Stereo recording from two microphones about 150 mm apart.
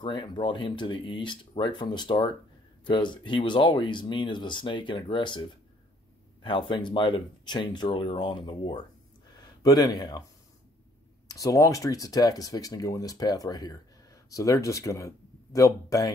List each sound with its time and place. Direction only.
0.0 s speech: 30° left (ahead or behind)
11.2 s speech: 20° left (ahead or behind)